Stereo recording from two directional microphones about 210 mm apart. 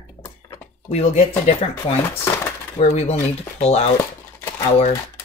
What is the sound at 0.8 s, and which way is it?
Speech, 30° left (ahead or behind).